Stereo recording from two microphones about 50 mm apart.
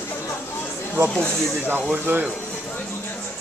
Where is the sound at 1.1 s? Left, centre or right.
Left.